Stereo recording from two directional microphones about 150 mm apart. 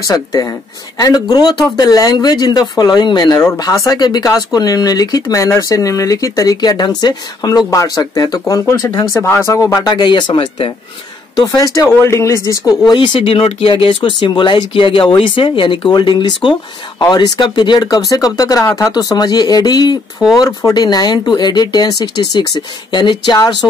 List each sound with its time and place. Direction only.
0.1 s speech: 25° left (ahead or behind)